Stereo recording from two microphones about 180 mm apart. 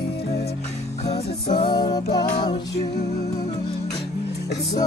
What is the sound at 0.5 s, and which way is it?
Music, 35° left (ahead or behind).